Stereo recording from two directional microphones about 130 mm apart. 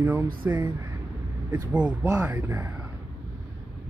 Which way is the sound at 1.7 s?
10° right (ahead or behind).